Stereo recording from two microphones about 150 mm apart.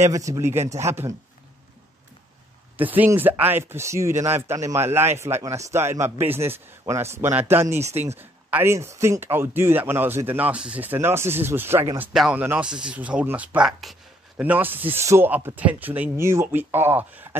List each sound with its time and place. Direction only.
0.0 s speech: 20° right (ahead or behind)
2.8 s speech: 10° right (ahead or behind)
12.1 s speech: 5° right (ahead or behind)
14.4 s speech: 10° right (ahead or behind)